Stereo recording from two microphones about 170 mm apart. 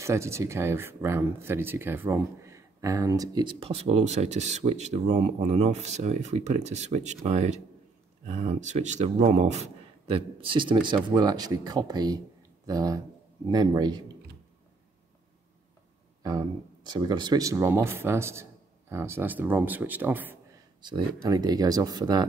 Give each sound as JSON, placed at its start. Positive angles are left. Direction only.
{"t": 0.0, "sound": "speech", "side_deg": -15}
{"t": 16.2, "sound": "speech", "side_deg": -20}
{"t": 20.8, "sound": "speech", "side_deg": -25}